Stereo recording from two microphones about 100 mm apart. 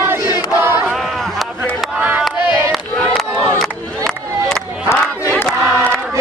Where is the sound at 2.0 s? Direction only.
15° right (ahead or behind).